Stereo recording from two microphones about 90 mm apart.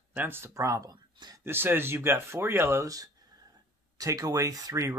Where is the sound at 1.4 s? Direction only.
25° right (ahead or behind).